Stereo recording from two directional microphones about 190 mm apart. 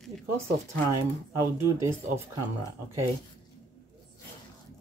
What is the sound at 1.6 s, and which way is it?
Speech, 15° right (ahead or behind).